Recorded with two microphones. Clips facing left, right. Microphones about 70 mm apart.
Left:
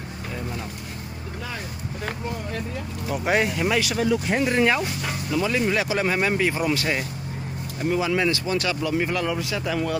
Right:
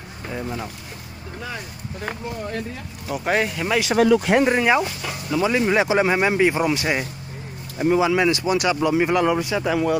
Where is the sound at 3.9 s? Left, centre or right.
Right.